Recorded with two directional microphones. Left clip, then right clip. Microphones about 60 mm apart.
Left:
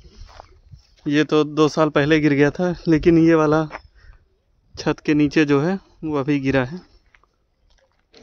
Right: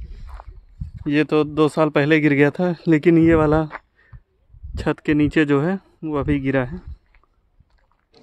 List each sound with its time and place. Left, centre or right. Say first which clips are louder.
1.0 s speech: even; right
1.3 s speech: left 1 dB; right
4.7 s speech: even; right; by 6.9 s centre
8.1 s pig: left 4 dB; right